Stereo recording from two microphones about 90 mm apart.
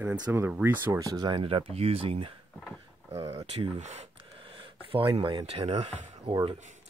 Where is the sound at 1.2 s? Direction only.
70° right (ahead or behind); by 2.3 s 90° right.